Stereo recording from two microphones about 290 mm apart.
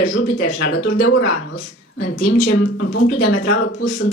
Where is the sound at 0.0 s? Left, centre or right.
Left.